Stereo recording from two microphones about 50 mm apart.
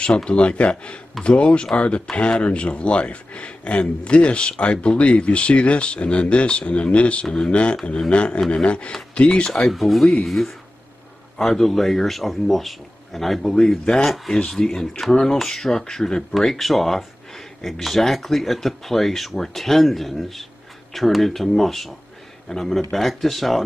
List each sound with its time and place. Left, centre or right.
0.0 s speech: centre
9.7 s speech: centre